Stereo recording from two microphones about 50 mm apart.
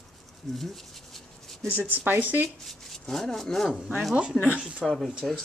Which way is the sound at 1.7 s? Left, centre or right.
Right.